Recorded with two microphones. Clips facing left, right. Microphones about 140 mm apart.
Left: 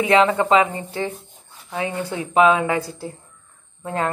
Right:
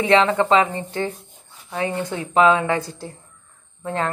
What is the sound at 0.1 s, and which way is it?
Speech, 15° left (ahead or behind).